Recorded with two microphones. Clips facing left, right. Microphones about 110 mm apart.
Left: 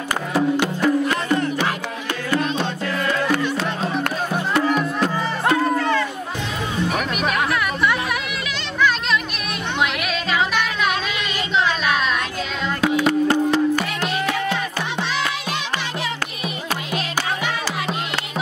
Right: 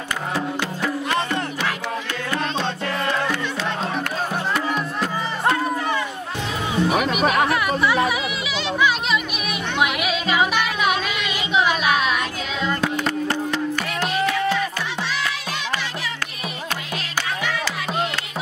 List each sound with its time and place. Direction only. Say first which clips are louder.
0.6 s music: left 6 dB; 20° left (ahead or behind)
5.8 s run: left 4 dB; 15° right (ahead or behind)
7.2 s chatter: right 3 dB; 45° right (ahead or behind)
7.5 s a sound: right 1 dB; 5° right (ahead or behind)
8.1 s music: right 1 dB; 5° right (ahead or behind)
11.5 s a sound: right 1 dB; 10° right (ahead or behind)
13.5 s music: left 6 dB; 35° left (ahead or behind)